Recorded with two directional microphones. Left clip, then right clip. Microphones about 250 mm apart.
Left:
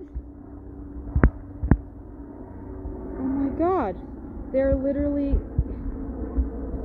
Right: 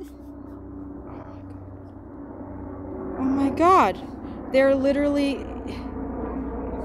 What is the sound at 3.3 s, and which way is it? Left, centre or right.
Vehicle, centre.